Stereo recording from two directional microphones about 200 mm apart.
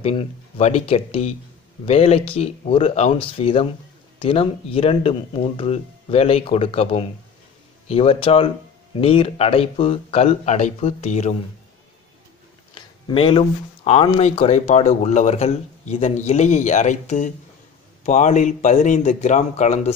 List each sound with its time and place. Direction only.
0.0 s speech: 30° left (ahead or behind)
12.7 s speech: 25° left (ahead or behind)